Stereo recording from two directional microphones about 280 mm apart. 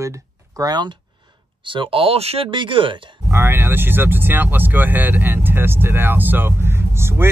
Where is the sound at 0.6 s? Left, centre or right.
Centre.